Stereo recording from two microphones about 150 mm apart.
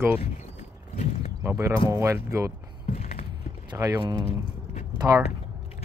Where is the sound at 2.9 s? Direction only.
45° left (ahead or behind).